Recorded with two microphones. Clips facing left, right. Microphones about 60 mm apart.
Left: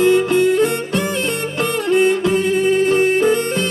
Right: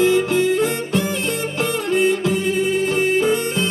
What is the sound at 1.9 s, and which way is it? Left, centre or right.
Music, left.